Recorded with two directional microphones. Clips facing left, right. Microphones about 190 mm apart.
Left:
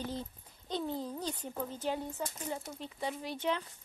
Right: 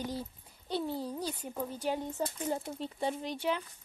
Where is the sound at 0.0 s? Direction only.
10° right (ahead or behind).